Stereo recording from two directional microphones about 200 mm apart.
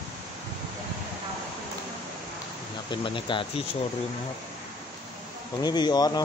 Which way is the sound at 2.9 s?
25° left (ahead or behind).